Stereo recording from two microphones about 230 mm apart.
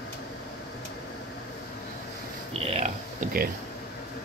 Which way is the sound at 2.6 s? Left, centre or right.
Right.